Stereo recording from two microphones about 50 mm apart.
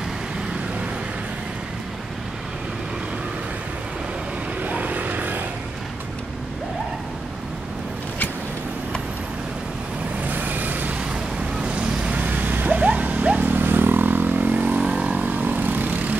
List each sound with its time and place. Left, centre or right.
4.6 s vehicle: right
10.2 s vehicle: right
11.6 s vehicle: right
12.2 s vehicle: right